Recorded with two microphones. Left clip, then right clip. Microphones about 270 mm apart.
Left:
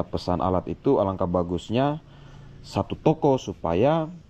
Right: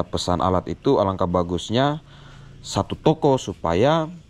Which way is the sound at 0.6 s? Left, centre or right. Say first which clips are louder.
Right 3 dB; left.